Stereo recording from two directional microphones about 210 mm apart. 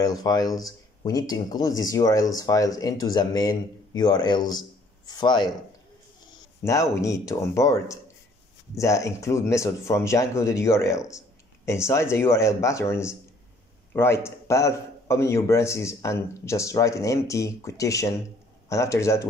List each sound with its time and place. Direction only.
0.0 s speech: 20° left (ahead or behind)
6.6 s speech: 15° left (ahead or behind)